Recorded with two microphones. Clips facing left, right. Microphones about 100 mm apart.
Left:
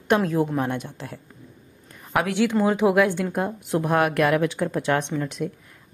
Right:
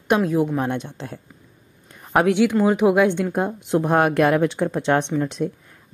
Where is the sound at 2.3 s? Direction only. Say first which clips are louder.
Right 2 dB; 20° right (ahead or behind).